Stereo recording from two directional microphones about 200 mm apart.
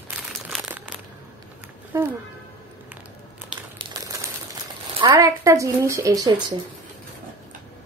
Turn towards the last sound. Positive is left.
turn(degrees=-15)  # may be behind; listen again after turning